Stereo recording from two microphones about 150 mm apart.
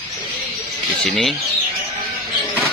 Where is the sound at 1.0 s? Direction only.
5° left (ahead or behind).